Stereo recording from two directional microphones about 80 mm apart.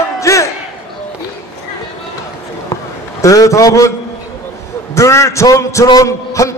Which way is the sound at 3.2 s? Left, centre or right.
Left.